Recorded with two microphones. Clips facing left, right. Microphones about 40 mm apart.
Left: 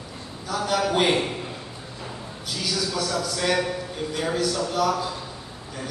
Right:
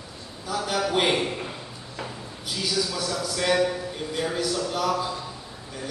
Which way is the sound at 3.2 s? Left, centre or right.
Centre.